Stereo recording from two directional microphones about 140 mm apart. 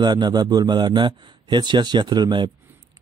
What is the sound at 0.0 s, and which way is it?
Speech, 30° right (ahead or behind).